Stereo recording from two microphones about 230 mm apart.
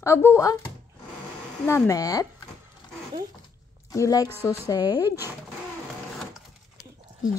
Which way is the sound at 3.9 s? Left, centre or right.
Centre.